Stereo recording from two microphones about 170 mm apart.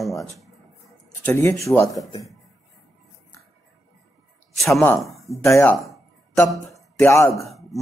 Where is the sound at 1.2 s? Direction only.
15° left (ahead or behind).